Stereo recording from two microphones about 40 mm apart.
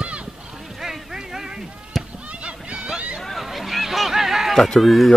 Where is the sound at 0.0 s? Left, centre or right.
Right.